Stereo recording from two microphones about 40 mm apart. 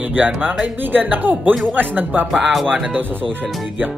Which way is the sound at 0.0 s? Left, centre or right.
Right.